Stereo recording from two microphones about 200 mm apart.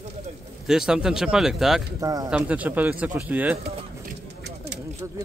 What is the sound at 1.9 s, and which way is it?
Speech, 20° right (ahead or behind).